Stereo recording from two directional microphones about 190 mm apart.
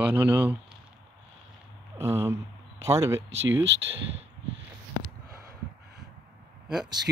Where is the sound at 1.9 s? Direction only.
15° right (ahead or behind).